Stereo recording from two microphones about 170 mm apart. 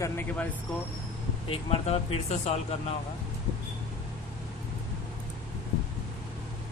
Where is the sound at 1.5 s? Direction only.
35° left (ahead or behind).